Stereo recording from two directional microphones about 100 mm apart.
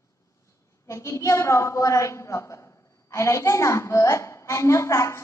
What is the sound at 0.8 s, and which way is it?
A woman's voice, 30° left (ahead or behind).